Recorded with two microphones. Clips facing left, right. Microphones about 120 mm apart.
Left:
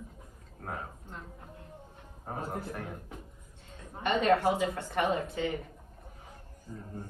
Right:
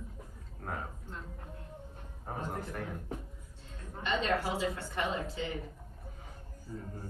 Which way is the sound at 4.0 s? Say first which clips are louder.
Left 6 dB; 55° left (ahead or behind).